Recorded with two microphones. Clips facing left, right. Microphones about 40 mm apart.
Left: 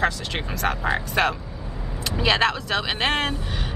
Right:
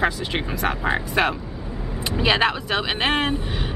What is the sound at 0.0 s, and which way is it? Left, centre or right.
Speech, centre.